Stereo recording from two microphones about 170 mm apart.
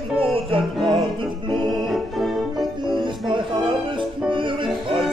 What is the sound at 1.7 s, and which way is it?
Organ, centre (ahead or behind).